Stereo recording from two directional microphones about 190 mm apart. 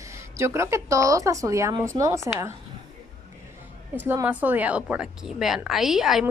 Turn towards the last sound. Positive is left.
turn(degrees=0)  # may be behind; listen again after turning